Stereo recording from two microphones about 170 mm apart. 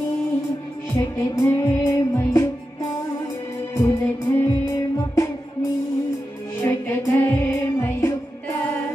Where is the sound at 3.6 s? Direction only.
10° left (ahead or behind).